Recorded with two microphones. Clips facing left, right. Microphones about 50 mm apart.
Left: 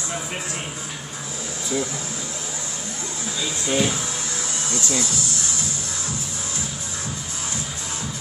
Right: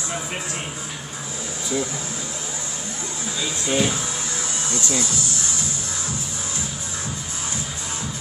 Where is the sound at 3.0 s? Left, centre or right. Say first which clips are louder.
Even; right.